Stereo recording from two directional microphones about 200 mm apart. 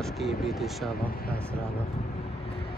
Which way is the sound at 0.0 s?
Centre (ahead or behind).